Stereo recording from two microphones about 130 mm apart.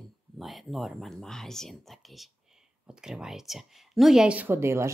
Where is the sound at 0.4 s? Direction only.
Centre (ahead or behind).